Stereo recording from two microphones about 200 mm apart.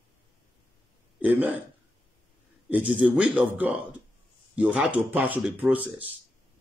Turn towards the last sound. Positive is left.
turn(degrees=-10)  # may be behind; listen again after turning